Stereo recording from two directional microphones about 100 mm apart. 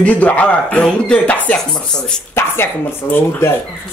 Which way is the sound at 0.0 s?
15° left (ahead or behind).